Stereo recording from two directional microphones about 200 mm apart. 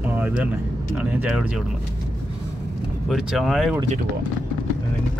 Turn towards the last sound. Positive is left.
turn(degrees=0)  # may be behind; listen again after turning